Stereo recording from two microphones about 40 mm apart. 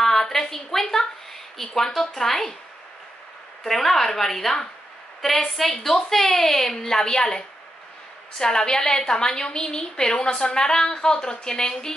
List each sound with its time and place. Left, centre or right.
0.0 s a sound: centre
1.6 s a woman's voice: centre
3.6 s a woman's voice: centre